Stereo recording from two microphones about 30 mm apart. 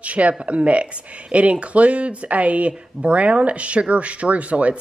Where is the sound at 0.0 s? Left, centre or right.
Right.